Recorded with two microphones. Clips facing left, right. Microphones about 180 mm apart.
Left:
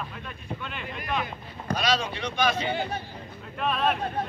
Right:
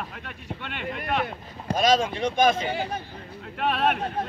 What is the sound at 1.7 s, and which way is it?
Speech, 45° right (ahead or behind).